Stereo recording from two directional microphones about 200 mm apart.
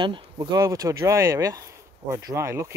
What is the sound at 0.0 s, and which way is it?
Speech, 20° right (ahead or behind).